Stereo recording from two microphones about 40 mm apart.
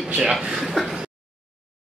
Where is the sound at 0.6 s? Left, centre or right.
Centre.